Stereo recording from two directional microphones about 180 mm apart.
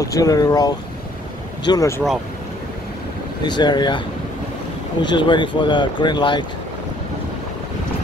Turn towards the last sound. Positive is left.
turn(degrees=25)  # may be behind; listen again after turning